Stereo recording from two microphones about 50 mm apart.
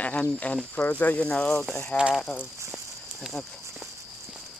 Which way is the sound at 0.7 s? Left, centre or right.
Left.